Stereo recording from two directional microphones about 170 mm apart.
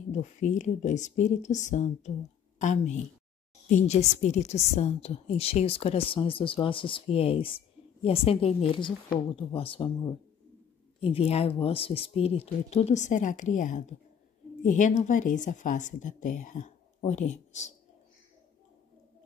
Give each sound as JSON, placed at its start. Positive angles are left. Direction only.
{"t": 0.1, "sound": "a woman's voice", "side_deg": 45}